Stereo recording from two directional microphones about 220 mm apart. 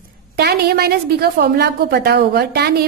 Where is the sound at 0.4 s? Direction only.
45° right (ahead or behind).